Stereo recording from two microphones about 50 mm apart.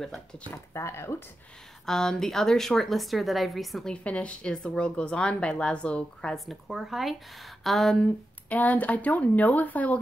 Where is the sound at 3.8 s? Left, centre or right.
Left.